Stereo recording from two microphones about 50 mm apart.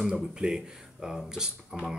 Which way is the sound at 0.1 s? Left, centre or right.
Centre.